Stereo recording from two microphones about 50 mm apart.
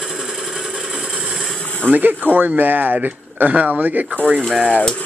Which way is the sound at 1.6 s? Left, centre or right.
Left.